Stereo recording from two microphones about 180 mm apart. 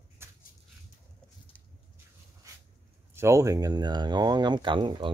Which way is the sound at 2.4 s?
15° right (ahead or behind).